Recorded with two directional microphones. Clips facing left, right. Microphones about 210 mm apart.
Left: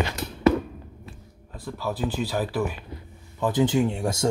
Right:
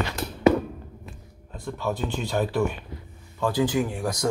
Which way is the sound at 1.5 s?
5° left (ahead or behind).